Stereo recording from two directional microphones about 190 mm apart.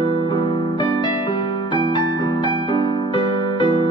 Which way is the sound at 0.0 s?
25° left (ahead or behind).